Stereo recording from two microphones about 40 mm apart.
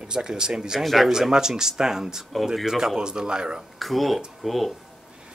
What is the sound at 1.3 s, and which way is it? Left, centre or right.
Speech, centre.